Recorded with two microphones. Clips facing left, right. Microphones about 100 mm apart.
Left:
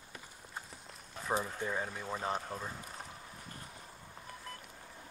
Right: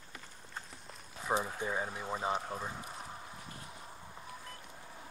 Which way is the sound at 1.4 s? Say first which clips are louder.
Right 1 dB; 10° right (ahead or behind).